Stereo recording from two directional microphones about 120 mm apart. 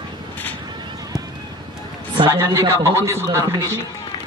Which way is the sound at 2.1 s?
40° right (ahead or behind).